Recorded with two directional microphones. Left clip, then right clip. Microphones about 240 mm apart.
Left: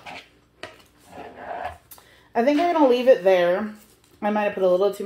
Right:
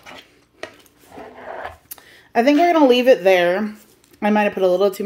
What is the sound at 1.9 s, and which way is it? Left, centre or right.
Speech, right.